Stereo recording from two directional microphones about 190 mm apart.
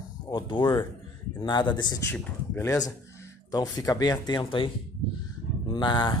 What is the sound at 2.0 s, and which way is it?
Speech, 10° left (ahead or behind).